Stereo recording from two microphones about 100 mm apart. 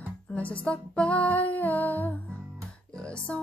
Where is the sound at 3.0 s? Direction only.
10° left (ahead or behind).